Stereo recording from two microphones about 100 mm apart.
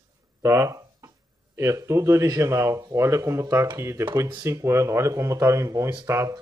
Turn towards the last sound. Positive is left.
turn(degrees=-25)  # may be behind; listen again after turning